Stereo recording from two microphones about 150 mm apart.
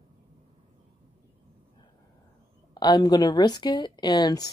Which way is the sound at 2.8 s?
30° left (ahead or behind).